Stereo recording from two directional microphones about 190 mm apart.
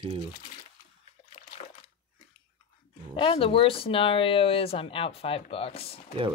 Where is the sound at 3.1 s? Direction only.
25° left (ahead or behind).